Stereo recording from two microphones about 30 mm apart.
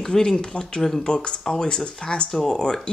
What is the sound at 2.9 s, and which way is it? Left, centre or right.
Speech, left.